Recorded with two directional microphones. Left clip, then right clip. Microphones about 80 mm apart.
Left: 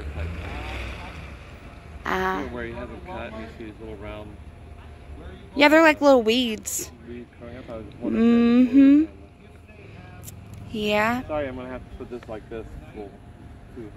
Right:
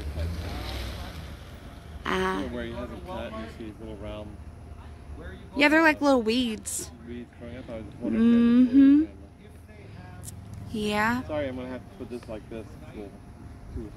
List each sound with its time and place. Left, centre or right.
0.1 s boat: centre
0.6 s boat: centre
2.0 s a sound: right
2.5 s a woman's voice: centre
3.1 s speech: left
5.5 s a woman's voice: centre
10.7 s speech: centre
11.2 s a woman's voice: centre